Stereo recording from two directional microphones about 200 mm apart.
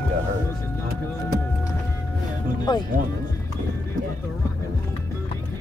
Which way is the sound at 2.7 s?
20° left (ahead or behind).